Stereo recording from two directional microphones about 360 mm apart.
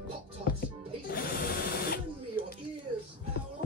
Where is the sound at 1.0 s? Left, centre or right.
Left.